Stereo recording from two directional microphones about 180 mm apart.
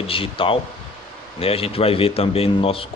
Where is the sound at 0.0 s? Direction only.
30° left (ahead or behind).